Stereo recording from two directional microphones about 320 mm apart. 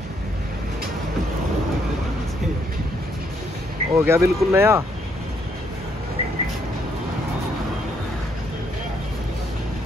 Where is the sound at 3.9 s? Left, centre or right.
Centre.